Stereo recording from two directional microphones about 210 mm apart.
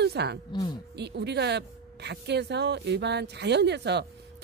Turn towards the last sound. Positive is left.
turn(degrees=-55)  # may be behind; listen again after turning